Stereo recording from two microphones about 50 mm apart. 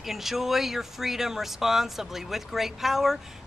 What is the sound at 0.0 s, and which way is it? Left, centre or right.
Speech, centre.